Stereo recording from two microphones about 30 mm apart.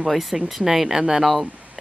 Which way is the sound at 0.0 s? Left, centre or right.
Centre.